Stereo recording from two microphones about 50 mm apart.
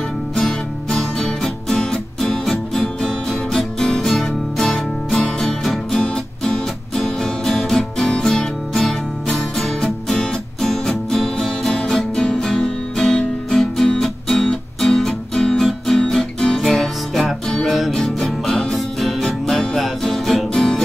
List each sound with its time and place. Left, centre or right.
0.4 s music: centre
9.6 s music: centre
17.9 s music: centre